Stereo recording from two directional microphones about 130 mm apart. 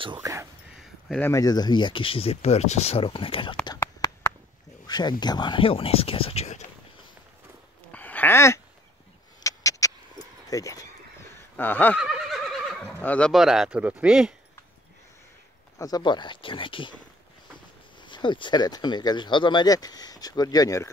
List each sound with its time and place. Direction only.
0.2 s speech: 25° right (ahead or behind)
0.7 s a sound: centre (ahead or behind)
1.2 s speech: 25° left (ahead or behind); by 3.5 s 40° left (ahead or behind)
3.6 s whispering: 30° left (ahead or behind)
4.8 s speech: 30° left (ahead or behind); by 6.6 s 55° left (ahead or behind)
7.9 s a sound: 15° left (ahead or behind)
11.5 s speech: 15° left (ahead or behind)
12.0 s neigh: 5° right (ahead or behind)
13.0 s speech: 10° left (ahead or behind)
13.3 s speech: 5° right (ahead or behind)
15.8 s speech: 35° left (ahead or behind)
18.0 s speech: 35° left (ahead or behind)